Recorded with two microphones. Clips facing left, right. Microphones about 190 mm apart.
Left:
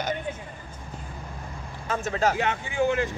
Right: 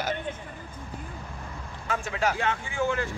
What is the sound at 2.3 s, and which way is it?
Speech, 20° left (ahead or behind).